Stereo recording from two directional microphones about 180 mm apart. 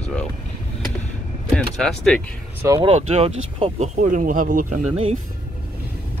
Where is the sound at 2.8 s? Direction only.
35° right (ahead or behind).